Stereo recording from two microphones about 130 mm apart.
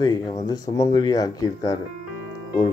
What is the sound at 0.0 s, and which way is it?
Speech, 30° left (ahead or behind).